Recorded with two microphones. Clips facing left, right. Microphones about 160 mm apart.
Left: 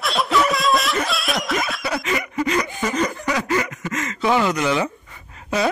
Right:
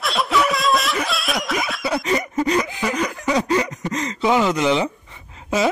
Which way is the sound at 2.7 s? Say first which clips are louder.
Left 1 dB; 5° right (ahead or behind).